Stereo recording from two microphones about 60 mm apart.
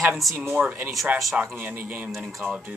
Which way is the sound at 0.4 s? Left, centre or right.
Right.